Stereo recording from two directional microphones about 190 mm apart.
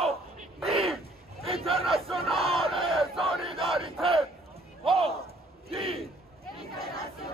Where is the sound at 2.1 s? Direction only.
30° right (ahead or behind).